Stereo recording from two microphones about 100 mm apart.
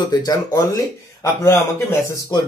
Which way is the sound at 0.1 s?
40° left (ahead or behind).